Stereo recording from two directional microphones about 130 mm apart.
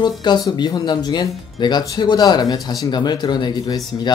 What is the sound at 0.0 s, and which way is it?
Speech, 35° left (ahead or behind).